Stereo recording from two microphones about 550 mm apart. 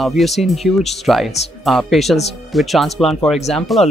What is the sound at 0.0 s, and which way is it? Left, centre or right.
Speech, centre.